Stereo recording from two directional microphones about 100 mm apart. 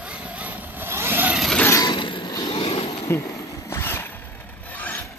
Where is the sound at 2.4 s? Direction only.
70° left (ahead or behind).